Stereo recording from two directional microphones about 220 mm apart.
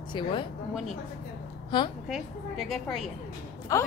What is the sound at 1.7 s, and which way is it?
Speech, 20° left (ahead or behind).